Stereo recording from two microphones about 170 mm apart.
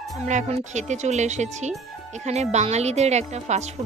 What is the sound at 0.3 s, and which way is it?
Speech, 45° right (ahead or behind).